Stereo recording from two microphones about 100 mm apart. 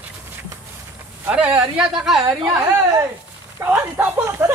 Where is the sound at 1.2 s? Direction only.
10° right (ahead or behind).